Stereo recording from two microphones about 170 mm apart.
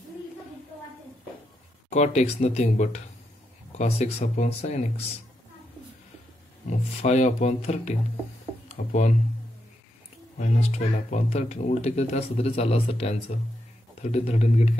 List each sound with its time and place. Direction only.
1.9 s speech: 40° left (ahead or behind)
6.7 s speech: 40° left (ahead or behind)
10.3 s speech: 45° left (ahead or behind)